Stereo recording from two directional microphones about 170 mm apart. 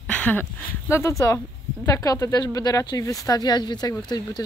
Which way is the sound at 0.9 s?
15° left (ahead or behind).